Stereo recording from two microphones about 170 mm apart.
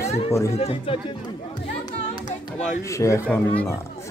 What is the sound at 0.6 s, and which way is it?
Speech, 40° left (ahead or behind).